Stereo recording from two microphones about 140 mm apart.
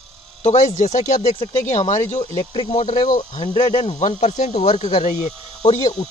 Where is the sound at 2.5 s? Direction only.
45° left (ahead or behind).